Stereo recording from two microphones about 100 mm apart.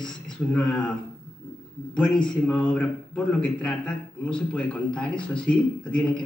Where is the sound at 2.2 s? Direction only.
10° left (ahead or behind).